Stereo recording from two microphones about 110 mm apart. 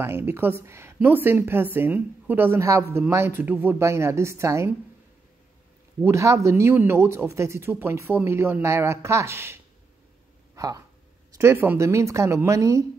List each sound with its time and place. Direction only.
0.0 s speech: 20° right (ahead or behind)
5.9 s speech: 25° right (ahead or behind)
10.5 s a sound: 30° right (ahead or behind)
11.3 s speech: 20° right (ahead or behind)